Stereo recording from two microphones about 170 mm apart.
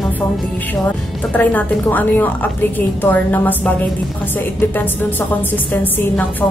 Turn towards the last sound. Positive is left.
turn(degrees=10)  # may be behind; listen again after turning